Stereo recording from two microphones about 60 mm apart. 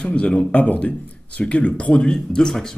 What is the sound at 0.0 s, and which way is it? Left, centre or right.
Speech, centre.